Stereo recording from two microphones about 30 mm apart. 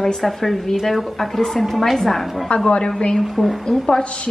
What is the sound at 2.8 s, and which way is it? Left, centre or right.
Speech, left.